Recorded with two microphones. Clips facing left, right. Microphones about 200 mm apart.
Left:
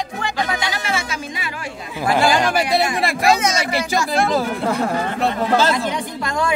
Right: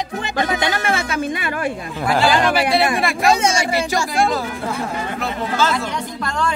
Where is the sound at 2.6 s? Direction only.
60° right (ahead or behind).